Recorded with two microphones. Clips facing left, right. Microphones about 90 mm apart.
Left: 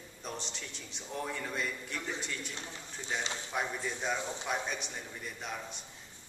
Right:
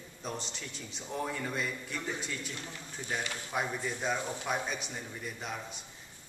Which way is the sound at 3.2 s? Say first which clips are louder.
Even; 20° left (ahead or behind).